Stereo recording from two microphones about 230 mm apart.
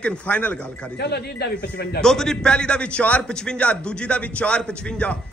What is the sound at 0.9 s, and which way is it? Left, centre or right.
Speech, left.